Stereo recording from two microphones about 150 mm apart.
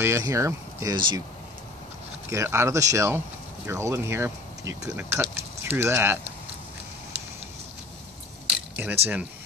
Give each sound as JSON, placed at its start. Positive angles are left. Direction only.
{"t": 0.0, "sound": "speech", "side_deg": -20}
{"t": 0.9, "sound": "speech", "side_deg": -30}
{"t": 2.2, "sound": "speech", "side_deg": -20}
{"t": 8.5, "sound": "a sound", "side_deg": -10}